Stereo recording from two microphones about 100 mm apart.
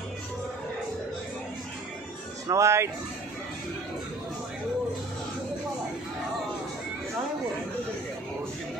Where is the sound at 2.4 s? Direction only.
30° right (ahead or behind).